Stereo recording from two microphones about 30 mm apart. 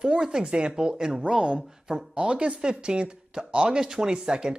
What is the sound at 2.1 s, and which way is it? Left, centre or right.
Speech, right.